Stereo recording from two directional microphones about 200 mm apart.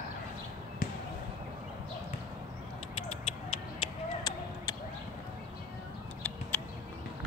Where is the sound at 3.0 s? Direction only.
30° left (ahead or behind).